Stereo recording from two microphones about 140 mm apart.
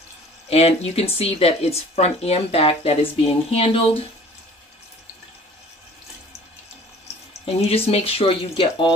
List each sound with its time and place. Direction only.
0.5 s speech: 45° left (ahead or behind)
7.4 s speech: 45° left (ahead or behind)